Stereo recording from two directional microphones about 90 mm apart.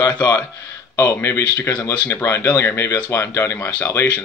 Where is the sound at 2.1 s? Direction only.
30° left (ahead or behind).